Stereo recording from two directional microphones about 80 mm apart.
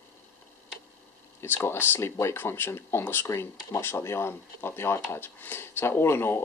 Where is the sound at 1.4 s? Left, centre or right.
Left.